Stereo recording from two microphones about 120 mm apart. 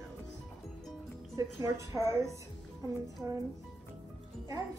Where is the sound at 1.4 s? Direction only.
25° right (ahead or behind).